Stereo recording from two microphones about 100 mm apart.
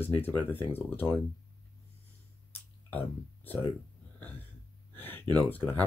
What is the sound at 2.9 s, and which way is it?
Speech, 20° left (ahead or behind).